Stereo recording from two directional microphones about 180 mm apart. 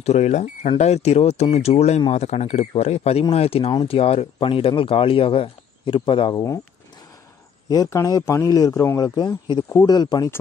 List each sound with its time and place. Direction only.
0.0 s speech: 40° left (ahead or behind)
6.3 s speech: 20° left (ahead or behind)
7.6 s speech: 20° left (ahead or behind)